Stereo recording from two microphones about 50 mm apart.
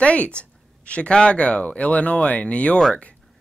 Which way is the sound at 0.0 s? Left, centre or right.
Left.